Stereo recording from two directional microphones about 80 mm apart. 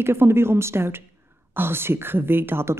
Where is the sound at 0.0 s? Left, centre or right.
Right.